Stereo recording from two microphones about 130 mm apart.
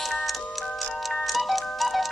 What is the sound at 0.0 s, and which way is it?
Music, centre (ahead or behind).